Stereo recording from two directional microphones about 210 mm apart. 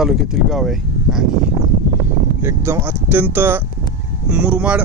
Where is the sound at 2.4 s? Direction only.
10° right (ahead or behind).